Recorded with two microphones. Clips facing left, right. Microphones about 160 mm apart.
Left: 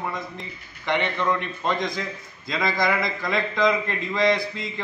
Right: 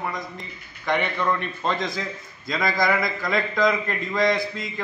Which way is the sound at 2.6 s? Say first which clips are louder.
Right 1 dB; 25° left (ahead or behind).